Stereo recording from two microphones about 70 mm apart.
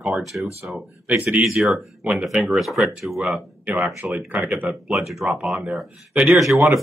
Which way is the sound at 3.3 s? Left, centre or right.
Centre.